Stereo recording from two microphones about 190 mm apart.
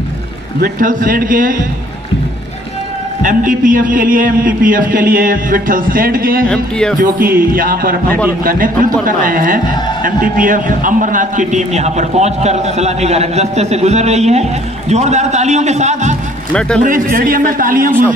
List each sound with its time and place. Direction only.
0.6 s a man's voice: 45° right (ahead or behind)
3.2 s a man's voice: 45° right (ahead or behind)
6.5 s speech: 5° left (ahead or behind)
7.0 s a man's voice: 50° right (ahead or behind)
9.0 s a man's voice: 45° right (ahead or behind)
16.5 s speech: 5° left (ahead or behind)
16.8 s a man's voice: 45° right (ahead or behind)